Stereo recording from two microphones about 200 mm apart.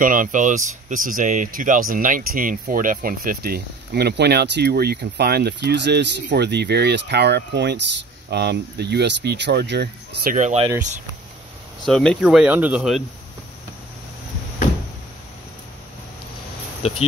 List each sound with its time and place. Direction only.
0.0 s speech: 40° right (ahead or behind)
10.3 s speech: 35° right (ahead or behind)
11.8 s speech: 5° left (ahead or behind)